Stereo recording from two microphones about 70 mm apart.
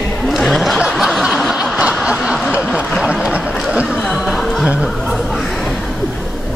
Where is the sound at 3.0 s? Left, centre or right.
Centre.